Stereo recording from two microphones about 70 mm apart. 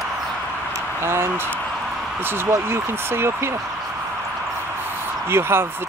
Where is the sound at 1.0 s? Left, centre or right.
Right.